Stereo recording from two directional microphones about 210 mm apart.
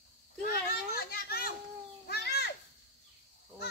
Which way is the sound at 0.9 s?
45° left (ahead or behind).